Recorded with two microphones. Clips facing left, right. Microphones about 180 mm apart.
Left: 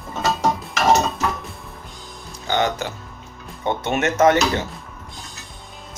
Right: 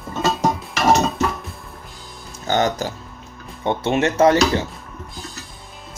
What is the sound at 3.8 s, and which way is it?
Speech, 30° right (ahead or behind).